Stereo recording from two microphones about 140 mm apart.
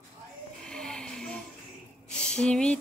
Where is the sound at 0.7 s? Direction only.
5° left (ahead or behind).